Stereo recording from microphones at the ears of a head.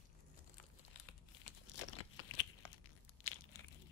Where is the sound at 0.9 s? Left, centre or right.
Left.